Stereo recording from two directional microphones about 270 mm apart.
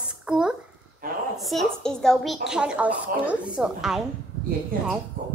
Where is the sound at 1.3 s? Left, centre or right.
Centre.